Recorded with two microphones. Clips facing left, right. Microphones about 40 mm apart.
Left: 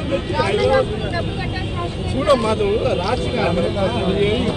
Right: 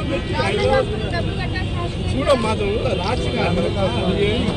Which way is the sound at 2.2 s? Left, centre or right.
Centre.